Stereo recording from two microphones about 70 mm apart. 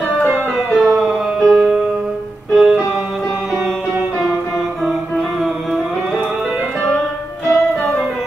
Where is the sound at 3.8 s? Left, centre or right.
Right.